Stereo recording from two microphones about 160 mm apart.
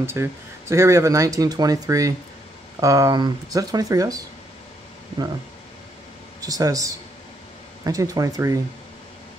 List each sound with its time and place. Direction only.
0.0 s speech: 15° right (ahead or behind)
6.4 s speech: 20° right (ahead or behind)